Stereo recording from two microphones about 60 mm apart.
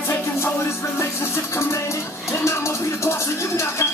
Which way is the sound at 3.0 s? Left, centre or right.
Left.